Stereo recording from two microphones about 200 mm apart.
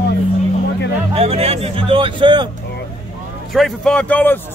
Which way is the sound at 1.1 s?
30° right (ahead or behind).